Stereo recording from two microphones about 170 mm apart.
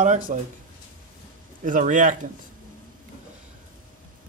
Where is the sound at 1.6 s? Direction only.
50° right (ahead or behind).